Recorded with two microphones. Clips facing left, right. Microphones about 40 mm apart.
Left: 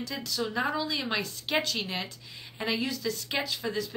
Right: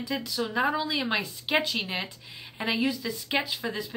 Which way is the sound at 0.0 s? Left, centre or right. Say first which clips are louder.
Right 2 dB; centre.